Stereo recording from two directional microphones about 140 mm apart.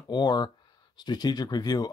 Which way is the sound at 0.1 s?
30° left (ahead or behind).